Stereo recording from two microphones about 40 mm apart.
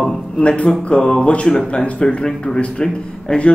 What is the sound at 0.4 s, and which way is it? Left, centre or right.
A woman's voice, left.